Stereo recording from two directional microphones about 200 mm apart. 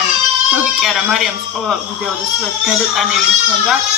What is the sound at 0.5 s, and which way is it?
Speech, centre (ahead or behind).